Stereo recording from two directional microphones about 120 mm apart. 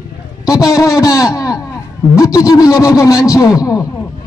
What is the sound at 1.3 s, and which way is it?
Speech, 30° left (ahead or behind).